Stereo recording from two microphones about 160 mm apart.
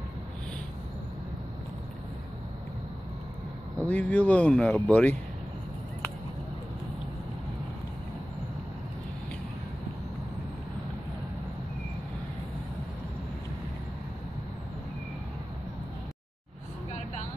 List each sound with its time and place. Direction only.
3.8 s speech: 10° left (ahead or behind)